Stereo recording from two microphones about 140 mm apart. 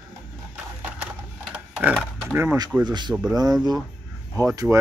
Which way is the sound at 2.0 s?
5° left (ahead or behind).